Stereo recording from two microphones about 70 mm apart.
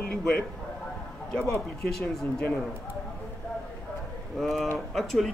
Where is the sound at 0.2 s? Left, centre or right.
Centre.